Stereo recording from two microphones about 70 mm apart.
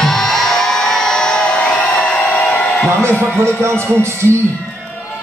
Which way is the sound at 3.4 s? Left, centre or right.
Right.